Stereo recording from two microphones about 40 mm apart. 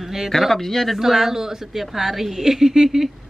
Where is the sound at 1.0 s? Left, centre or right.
Centre.